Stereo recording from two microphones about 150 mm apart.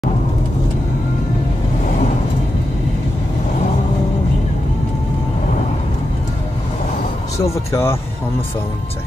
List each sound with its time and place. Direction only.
7.7 s speech: 15° left (ahead or behind)